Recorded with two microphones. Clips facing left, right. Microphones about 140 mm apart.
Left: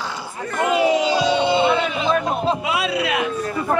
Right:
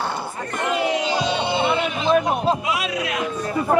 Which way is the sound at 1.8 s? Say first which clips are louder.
Right 1 dB; 15° right (ahead or behind).